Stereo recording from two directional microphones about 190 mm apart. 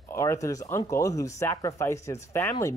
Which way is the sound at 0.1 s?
15° left (ahead or behind).